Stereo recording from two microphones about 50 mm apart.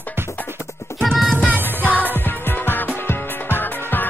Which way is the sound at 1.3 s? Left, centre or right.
Right.